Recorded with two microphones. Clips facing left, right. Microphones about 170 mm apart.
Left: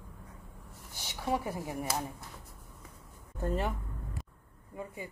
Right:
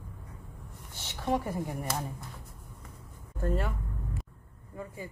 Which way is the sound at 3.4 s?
20° left (ahead or behind).